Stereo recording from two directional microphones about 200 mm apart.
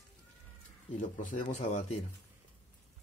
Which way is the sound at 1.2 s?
40° left (ahead or behind).